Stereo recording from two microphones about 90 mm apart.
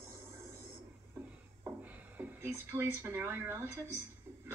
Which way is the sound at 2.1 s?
25° right (ahead or behind).